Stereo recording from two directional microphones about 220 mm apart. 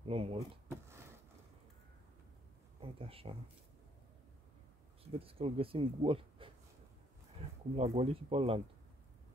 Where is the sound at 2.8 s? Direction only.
25° right (ahead or behind).